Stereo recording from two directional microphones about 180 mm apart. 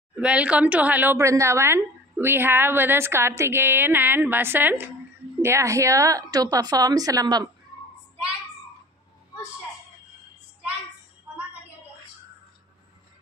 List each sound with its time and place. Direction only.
0.1 s a woman's voice: 5° right (ahead or behind)